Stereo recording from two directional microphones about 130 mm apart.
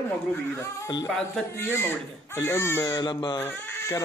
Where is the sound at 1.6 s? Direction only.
20° left (ahead or behind); by 3.4 s 35° left (ahead or behind).